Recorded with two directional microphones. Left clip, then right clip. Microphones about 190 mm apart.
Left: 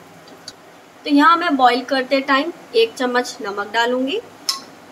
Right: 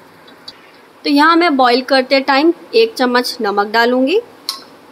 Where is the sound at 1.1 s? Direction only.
55° right (ahead or behind).